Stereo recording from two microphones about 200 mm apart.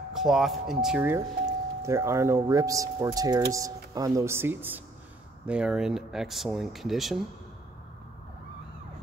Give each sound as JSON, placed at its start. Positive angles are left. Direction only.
{"t": 0.1, "sound": "speech", "side_deg": 0}